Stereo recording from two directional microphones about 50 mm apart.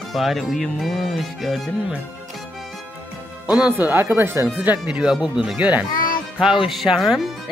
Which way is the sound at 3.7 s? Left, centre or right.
Right.